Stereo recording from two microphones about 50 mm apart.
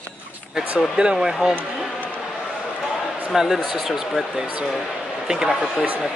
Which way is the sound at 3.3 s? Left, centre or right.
Centre.